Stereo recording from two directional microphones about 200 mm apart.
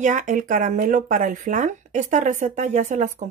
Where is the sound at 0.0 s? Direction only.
40° right (ahead or behind).